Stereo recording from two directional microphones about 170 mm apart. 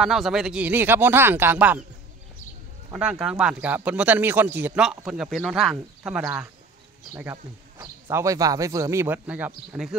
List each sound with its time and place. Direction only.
0.0 s speech: centre (ahead or behind)
2.9 s a man's voice: 5° right (ahead or behind)